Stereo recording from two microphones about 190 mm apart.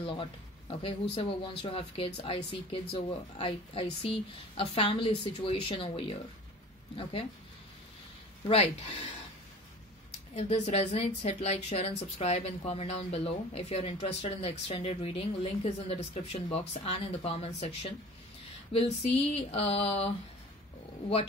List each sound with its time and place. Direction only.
0.0 s speech: 25° left (ahead or behind)
8.5 s a woman's voice: 35° left (ahead or behind)
10.3 s a woman's voice: 35° left (ahead or behind)
18.7 s a woman's voice: 30° left (ahead or behind)